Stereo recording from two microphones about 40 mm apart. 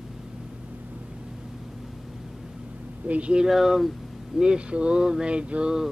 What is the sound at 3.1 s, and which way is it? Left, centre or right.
Speech, right.